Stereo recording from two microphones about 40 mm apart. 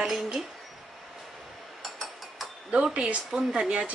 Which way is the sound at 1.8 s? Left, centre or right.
Centre.